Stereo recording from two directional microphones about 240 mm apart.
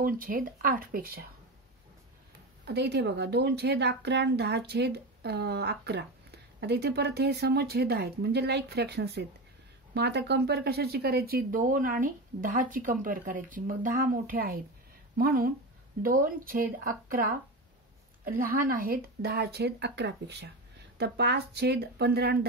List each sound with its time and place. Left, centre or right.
0.0 s speech: right
2.6 s a woman's voice: right